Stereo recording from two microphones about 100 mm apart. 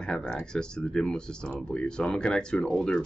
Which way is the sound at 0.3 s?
10° left (ahead or behind).